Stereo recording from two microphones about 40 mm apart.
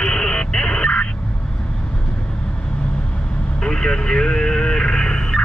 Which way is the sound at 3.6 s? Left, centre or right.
Left.